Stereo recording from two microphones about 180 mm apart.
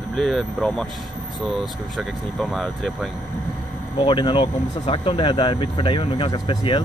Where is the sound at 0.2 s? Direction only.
5° left (ahead or behind).